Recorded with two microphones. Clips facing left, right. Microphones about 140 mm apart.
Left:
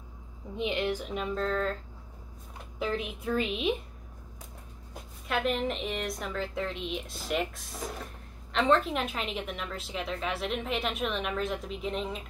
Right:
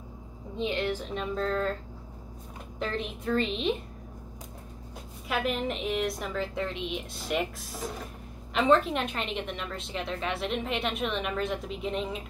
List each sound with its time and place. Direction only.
0.6 s a woman's voice: 15° left (ahead or behind)
1.1 s a woman's voice: centre (ahead or behind)
2.8 s a woman's voice: 5° left (ahead or behind)
5.3 s a woman's voice: centre (ahead or behind)